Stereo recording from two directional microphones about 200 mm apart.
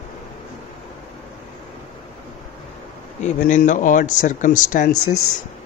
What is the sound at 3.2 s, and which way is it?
Speech, 40° left (ahead or behind).